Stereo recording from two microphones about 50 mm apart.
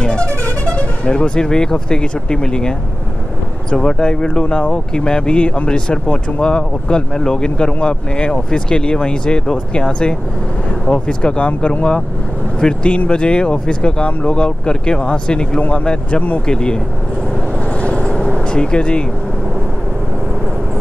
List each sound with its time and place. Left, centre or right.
0.0 s speech: centre
3.7 s speech: centre
16.4 s speech: centre
17.8 s vehicle: left